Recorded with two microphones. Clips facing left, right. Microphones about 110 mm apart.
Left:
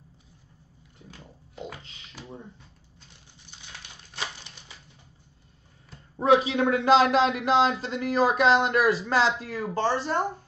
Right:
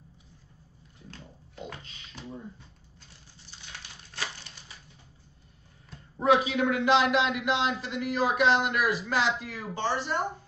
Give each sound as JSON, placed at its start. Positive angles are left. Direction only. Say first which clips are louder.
{"t": 1.1, "sound": "pig", "louder": "left 3 dB", "side_deg": 15}
{"t": 6.2, "sound": "a man's voice", "louder": "left 3 dB", "side_deg": 30}